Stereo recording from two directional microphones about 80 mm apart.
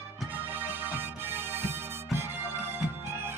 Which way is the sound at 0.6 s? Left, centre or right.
Right.